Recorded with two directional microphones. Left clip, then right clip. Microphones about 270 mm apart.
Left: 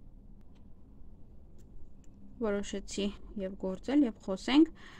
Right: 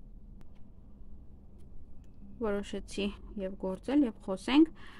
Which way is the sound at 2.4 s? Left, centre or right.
Centre.